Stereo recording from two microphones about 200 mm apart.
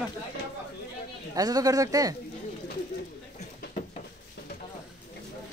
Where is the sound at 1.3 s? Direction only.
20° right (ahead or behind).